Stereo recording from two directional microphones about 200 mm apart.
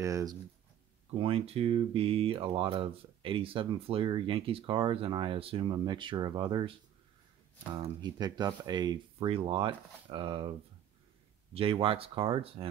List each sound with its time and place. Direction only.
0.0 s speech: 15° right (ahead or behind)
1.1 s speech: 30° right (ahead or behind)
11.5 s speech: 30° right (ahead or behind)